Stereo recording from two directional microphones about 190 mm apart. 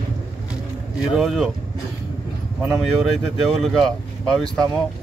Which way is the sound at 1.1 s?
Centre (ahead or behind).